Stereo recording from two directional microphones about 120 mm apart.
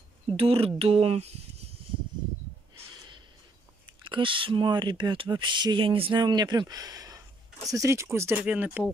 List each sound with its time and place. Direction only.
0.4 s speech: 50° right (ahead or behind)
3.8 s speech: 45° right (ahead or behind)
6.2 s speech: 35° right (ahead or behind); by 8.8 s 10° right (ahead or behind)